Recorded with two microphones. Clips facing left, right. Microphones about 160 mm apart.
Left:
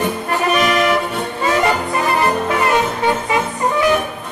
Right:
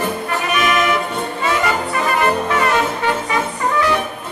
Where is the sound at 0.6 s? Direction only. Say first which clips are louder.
Even; 35° left (ahead or behind).